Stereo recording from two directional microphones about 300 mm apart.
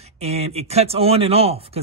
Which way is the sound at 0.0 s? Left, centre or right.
Right.